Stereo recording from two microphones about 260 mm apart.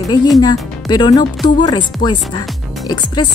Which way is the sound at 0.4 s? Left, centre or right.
Centre.